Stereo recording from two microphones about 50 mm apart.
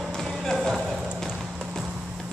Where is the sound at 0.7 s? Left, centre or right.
Centre.